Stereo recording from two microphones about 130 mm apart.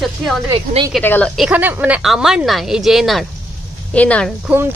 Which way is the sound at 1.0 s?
15° left (ahead or behind).